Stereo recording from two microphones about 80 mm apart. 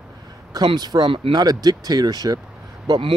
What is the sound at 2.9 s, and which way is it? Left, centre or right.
Speech, right.